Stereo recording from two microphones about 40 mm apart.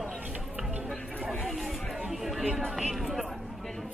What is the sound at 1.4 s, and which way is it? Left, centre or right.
Chatter, centre.